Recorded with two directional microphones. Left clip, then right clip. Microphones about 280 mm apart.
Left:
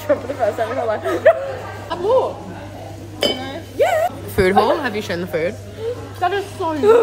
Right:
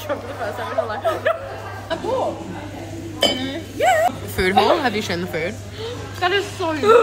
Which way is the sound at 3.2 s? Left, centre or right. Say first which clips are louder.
Right 1 dB; left.